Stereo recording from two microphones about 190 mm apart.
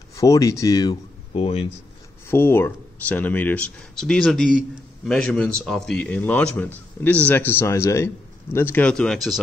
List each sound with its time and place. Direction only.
0.1 s speech: 15° left (ahead or behind)
1.3 s speech: 30° left (ahead or behind)
2.2 s speech: 10° left (ahead or behind)